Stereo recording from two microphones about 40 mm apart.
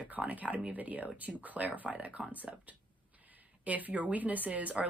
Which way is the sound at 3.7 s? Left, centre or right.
Right.